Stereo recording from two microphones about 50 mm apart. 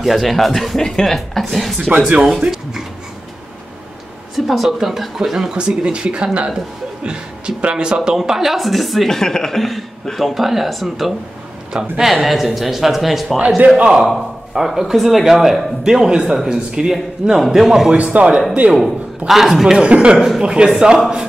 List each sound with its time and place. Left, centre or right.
0.0 s a man's voice: centre
4.5 s speech: centre
11.7 s speech: centre
12.1 s speech: centre
13.7 s speech: centre
14.7 s speech: centre
15.8 s a man's voice: centre
17.9 s speech: right
18.8 s speech: centre
19.8 s speech: right
20.2 s a man's voice: centre